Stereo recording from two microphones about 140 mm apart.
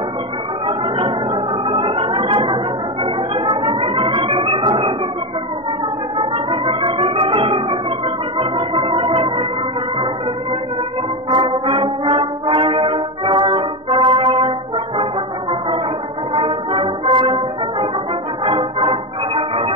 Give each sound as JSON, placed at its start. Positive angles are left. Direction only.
{"t": 0.7, "sound": "music", "side_deg": -40}
{"t": 6.1, "sound": "music", "side_deg": -40}
{"t": 11.3, "sound": "brass instrument", "side_deg": -40}
{"t": 16.3, "sound": "music", "side_deg": -35}